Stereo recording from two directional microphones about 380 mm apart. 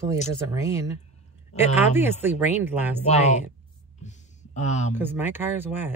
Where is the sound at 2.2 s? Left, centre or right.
Centre.